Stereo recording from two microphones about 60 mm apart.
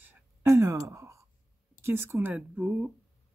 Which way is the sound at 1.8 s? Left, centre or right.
Right.